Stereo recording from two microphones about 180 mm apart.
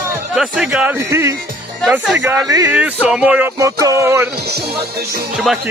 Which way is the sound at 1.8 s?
Centre (ahead or behind).